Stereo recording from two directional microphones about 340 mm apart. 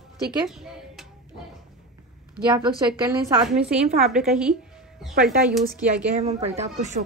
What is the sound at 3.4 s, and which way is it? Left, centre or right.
A woman's voice, centre.